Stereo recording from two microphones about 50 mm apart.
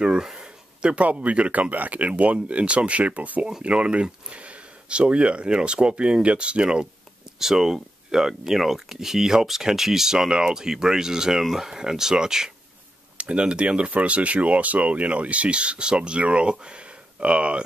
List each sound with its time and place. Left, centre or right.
0.0 s speech: centre
7.3 s speech: centre
13.2 s speech: right